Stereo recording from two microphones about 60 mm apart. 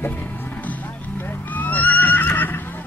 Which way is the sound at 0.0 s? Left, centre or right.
Left.